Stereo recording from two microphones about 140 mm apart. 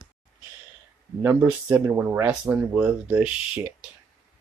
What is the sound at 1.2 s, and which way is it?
Speech, 20° right (ahead or behind).